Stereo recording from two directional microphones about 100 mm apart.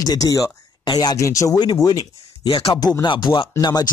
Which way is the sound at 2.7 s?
45° left (ahead or behind).